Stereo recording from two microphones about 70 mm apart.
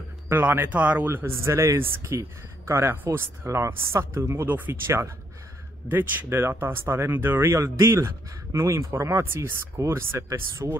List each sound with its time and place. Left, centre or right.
0.3 s speech: right
4.5 s speech: right
10.6 s speech: right